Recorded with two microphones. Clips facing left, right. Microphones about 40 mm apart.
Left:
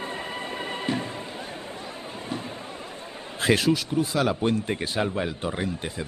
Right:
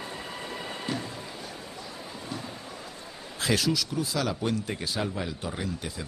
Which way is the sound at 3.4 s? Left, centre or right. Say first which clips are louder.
Left 5 dB; left.